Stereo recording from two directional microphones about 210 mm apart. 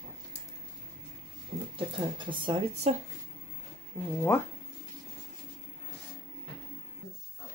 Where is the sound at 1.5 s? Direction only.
40° right (ahead or behind).